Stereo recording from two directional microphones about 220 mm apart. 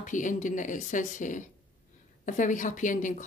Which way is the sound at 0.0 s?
35° left (ahead or behind).